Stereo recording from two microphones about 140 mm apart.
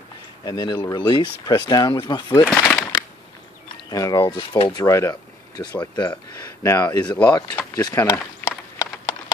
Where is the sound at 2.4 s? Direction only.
10° left (ahead or behind).